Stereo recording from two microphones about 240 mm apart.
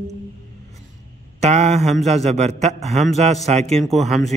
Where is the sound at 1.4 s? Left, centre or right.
Right.